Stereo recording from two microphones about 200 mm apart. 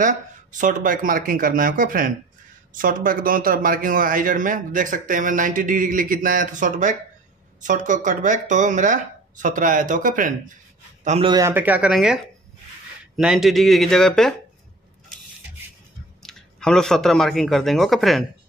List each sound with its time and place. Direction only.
0.0 s a man's voice: 40° right (ahead or behind)
11.1 s speech: 25° right (ahead or behind); by 14.3 s 5° left (ahead or behind)
16.2 s speech: centre (ahead or behind)